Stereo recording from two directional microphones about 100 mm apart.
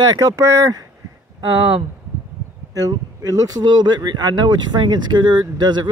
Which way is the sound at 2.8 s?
35° right (ahead or behind).